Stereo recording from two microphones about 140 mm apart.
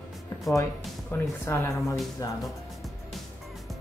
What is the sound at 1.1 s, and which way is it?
Speech, 20° left (ahead or behind).